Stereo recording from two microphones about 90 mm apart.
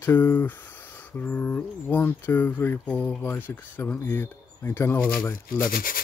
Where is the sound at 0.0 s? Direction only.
20° left (ahead or behind).